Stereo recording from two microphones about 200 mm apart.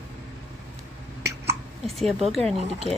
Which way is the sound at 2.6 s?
30° right (ahead or behind).